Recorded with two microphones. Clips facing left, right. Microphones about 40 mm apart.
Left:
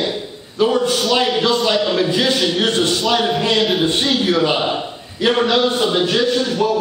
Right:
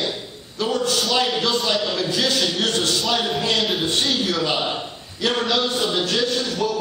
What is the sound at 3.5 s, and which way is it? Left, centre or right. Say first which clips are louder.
Speech: left 4 dB; centre.